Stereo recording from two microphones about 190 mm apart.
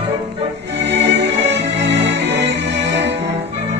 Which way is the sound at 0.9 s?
65° right (ahead or behind).